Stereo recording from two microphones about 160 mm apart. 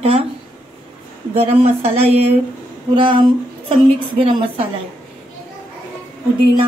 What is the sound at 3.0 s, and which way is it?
Speech, 30° right (ahead or behind).